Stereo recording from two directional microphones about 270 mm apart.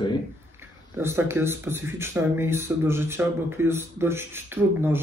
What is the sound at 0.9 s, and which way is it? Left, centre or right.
Speech, centre.